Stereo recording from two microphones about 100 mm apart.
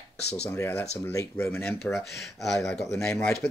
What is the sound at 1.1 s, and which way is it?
Speech, 30° left (ahead or behind).